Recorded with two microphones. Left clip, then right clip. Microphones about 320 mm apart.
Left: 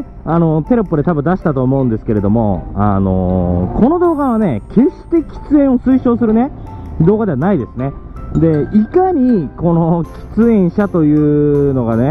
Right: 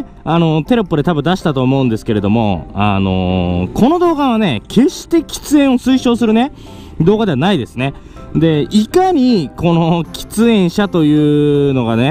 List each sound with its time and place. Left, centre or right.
0.2 s speech: right
3.0 s mantra: right
3.8 s speech: right